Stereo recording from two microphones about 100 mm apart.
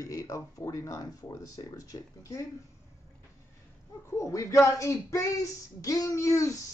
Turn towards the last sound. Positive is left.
turn(degrees=30)  # may be behind; listen again after turning